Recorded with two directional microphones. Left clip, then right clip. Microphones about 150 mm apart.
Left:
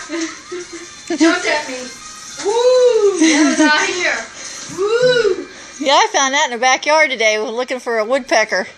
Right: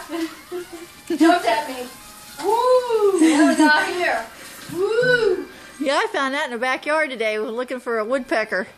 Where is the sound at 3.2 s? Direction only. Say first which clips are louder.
Left 3 dB; 15° right (ahead or behind).